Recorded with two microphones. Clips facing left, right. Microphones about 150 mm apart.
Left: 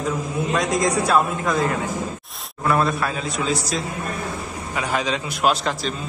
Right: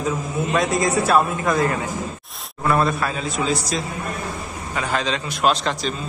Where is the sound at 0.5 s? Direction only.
5° right (ahead or behind).